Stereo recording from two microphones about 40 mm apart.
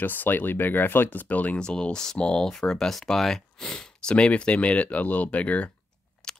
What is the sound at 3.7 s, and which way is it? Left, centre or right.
Speech, left.